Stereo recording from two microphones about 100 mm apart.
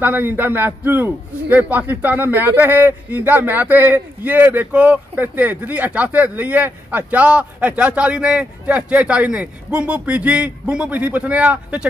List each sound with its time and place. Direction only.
0.0 s a man's voice: 20° right (ahead or behind)